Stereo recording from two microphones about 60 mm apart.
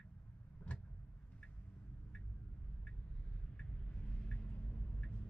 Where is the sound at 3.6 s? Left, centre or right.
Centre.